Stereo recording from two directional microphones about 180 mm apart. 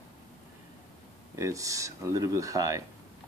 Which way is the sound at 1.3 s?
20° right (ahead or behind).